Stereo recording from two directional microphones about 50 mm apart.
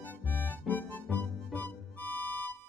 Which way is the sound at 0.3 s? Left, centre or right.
Left.